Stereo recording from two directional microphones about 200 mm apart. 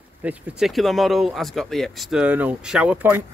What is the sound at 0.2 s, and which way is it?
Speech, 5° right (ahead or behind).